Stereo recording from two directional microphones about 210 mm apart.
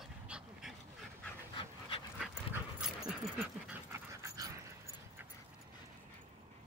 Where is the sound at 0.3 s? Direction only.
Centre (ahead or behind).